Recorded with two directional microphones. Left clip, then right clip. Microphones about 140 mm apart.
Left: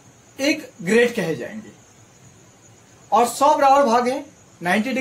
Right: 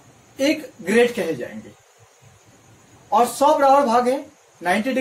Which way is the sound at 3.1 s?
45° left (ahead or behind).